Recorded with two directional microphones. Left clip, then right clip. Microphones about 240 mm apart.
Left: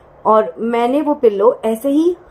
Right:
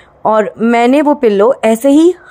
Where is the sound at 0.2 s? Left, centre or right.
Right.